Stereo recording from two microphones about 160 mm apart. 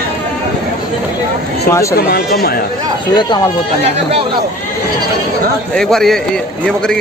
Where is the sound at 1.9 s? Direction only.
70° left (ahead or behind).